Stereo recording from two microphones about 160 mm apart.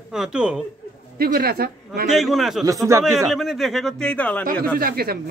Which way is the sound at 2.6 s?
20° right (ahead or behind).